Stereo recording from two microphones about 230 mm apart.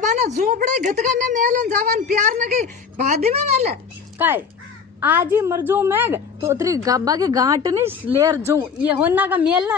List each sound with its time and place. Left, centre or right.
0.0 s a sound: right
0.4 s a woman's voice: right
4.2 s a woman's voice: centre